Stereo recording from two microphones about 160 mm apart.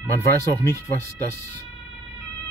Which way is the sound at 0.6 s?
15° left (ahead or behind).